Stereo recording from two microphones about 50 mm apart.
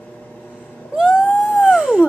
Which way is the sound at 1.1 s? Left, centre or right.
Centre.